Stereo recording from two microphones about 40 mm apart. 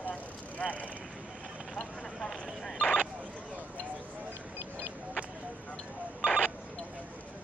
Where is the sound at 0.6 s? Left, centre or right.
Left.